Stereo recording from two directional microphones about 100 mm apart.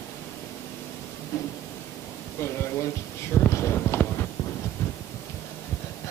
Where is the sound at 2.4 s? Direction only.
25° left (ahead or behind).